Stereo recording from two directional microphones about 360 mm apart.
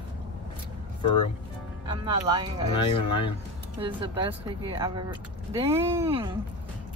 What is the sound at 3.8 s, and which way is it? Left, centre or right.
Speech, centre.